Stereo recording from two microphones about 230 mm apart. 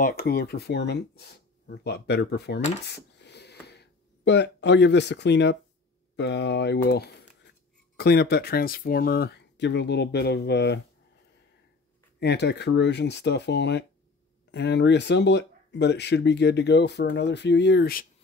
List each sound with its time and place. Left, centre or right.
0.0 s speech: left
2.9 s a sound: left
6.1 s speech: left
12.2 s speech: left